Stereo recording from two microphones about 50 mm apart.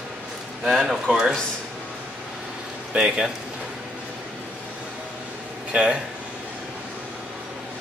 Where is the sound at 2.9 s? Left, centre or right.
Centre.